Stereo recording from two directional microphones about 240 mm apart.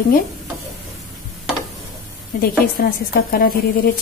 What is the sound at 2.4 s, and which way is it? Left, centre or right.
A woman's voice, left.